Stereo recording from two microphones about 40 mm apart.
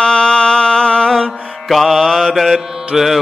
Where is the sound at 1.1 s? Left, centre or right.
Centre.